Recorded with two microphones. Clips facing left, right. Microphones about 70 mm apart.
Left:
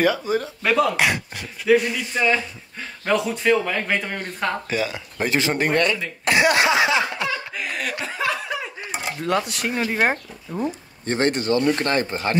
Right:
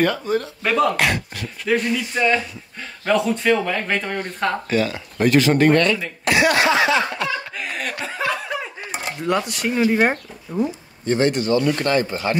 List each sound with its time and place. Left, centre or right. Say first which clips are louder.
0.0 s speech: even; centre
1.7 s speech: left 2 dB; centre
5.3 s speech: right 6 dB; centre
6.2 s speech: right 1 dB; left; by 7.9 s centre
8.0 s chuckle: right 2 dB; centre
9.8 s speech: right 3 dB; centre
11.1 s speech: right 2 dB; left